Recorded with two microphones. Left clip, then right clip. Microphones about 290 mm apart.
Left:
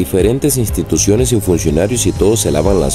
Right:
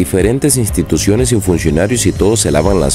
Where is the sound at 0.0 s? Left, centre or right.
Centre.